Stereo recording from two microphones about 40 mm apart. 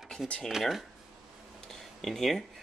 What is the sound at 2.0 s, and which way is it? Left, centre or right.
Speech, centre.